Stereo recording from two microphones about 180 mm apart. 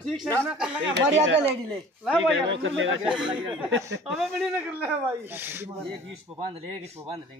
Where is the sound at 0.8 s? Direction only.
90° right.